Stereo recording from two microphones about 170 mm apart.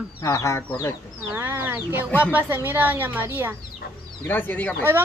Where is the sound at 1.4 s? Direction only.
10° right (ahead or behind).